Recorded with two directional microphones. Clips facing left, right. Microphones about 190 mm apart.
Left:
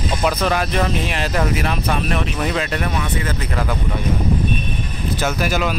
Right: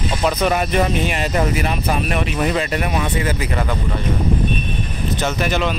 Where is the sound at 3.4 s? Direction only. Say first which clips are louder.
Right 1 dB; centre (ahead or behind).